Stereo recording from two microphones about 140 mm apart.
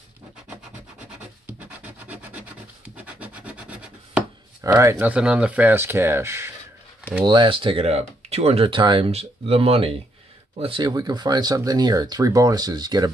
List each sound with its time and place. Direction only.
1.8 s rub: 10° right (ahead or behind)
4.9 s speech: 10° right (ahead or behind)
7.2 s speech: 35° right (ahead or behind)